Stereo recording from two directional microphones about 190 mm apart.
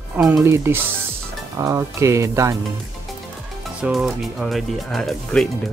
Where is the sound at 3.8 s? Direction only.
Centre (ahead or behind).